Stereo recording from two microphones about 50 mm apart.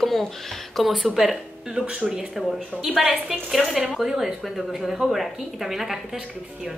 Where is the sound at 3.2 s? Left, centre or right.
Centre.